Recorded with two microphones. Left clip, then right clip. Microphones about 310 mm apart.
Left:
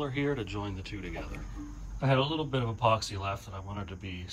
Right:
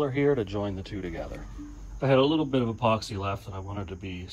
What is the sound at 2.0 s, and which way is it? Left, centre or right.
Speech, centre.